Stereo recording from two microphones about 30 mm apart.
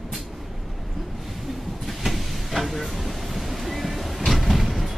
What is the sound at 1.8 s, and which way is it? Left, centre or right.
Vehicle, centre.